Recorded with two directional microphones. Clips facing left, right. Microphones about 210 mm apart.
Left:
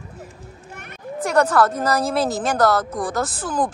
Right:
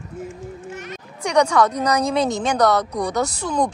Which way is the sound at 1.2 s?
5° left (ahead or behind).